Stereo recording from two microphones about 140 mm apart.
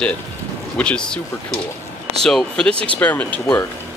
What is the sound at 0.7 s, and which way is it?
Speech, 5° left (ahead or behind).